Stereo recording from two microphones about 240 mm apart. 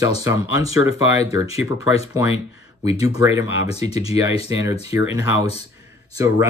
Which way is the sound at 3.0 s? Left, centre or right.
Centre.